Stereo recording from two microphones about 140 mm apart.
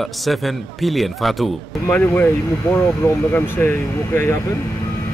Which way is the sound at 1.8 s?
15° left (ahead or behind).